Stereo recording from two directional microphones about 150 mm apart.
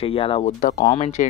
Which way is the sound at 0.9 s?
50° left (ahead or behind).